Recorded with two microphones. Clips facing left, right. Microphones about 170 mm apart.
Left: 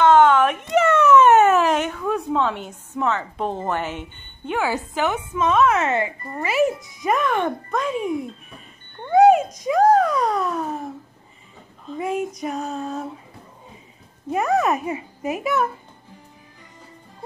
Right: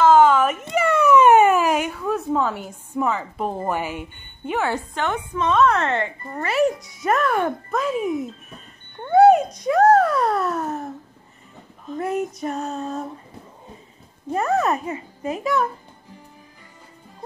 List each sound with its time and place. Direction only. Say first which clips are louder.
0.0 s speech: even; 5° right (ahead or behind)
9.6 s speech: right 1 dB; centre (ahead or behind)
12.0 s speech: even; centre (ahead or behind)
14.3 s a child's voice: left 1 dB; 15° left (ahead or behind)